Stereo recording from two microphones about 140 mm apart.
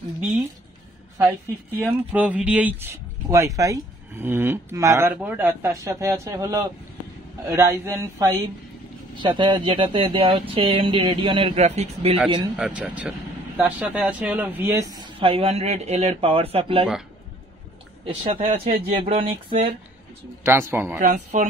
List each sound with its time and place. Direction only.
1.9 s speech: 10° right (ahead or behind)
9.2 s speech: 35° right (ahead or behind)
11.5 s speech: 50° right (ahead or behind)
12.5 s speech: 5° right (ahead or behind); by 16.8 s 45° right (ahead or behind)
18.0 s speech: 45° right (ahead or behind)
20.4 s speech: 20° right (ahead or behind)
21.0 s speech: 55° right (ahead or behind)